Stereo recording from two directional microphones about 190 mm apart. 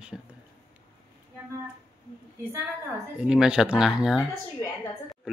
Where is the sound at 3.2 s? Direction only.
5° right (ahead or behind).